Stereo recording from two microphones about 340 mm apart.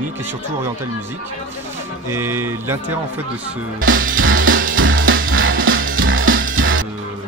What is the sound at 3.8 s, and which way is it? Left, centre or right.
Music, right.